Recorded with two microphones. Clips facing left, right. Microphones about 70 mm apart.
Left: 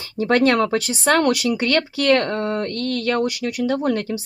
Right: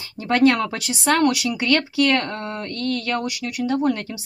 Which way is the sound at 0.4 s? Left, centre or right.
Left.